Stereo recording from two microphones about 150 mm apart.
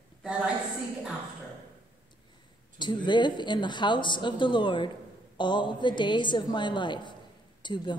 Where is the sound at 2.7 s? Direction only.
30° left (ahead or behind).